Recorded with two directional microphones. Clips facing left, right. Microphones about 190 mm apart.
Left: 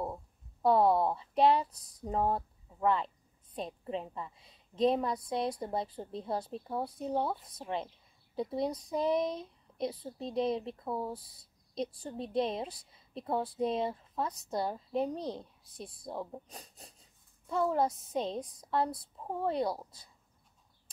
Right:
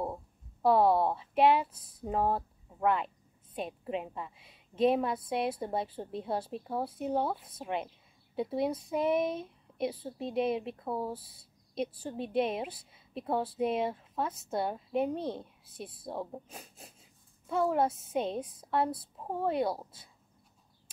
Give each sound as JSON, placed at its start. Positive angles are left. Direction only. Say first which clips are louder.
{"t": 0.0, "sound": "a woman's voice", "louder": "right 2 dB", "side_deg": -5}
{"t": 11.1, "sound": "a woman's voice", "louder": "right 2 dB", "side_deg": -25}
{"t": 11.7, "sound": "a woman's voice", "louder": "right 2 dB", "side_deg": -5}